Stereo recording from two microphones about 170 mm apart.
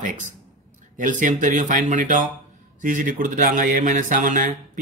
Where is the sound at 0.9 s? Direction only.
50° right (ahead or behind).